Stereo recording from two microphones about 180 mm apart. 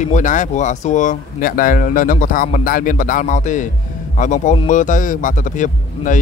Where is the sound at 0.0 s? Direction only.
45° left (ahead or behind).